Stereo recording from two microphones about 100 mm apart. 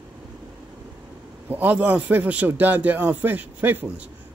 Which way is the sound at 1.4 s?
15° right (ahead or behind).